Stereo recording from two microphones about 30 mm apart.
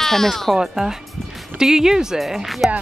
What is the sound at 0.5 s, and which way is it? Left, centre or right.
Speech, centre.